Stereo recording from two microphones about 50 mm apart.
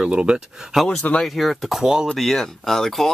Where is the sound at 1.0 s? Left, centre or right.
Left.